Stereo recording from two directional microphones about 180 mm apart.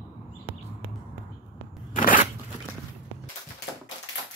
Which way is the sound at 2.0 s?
50° left (ahead or behind).